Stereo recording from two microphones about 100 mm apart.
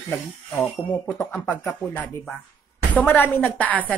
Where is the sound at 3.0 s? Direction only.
20° left (ahead or behind).